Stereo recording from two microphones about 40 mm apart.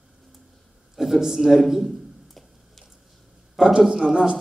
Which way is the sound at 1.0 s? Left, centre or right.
Centre.